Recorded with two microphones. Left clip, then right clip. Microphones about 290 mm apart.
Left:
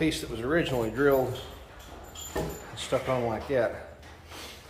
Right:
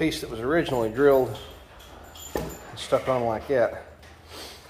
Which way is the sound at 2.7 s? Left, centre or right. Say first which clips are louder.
Right 5 dB; right.